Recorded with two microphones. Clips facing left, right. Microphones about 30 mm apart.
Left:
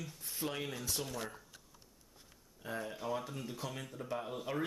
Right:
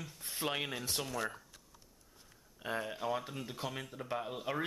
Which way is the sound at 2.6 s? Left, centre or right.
Right.